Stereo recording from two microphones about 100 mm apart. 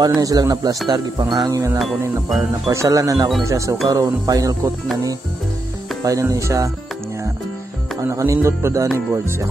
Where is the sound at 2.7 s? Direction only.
30° right (ahead or behind).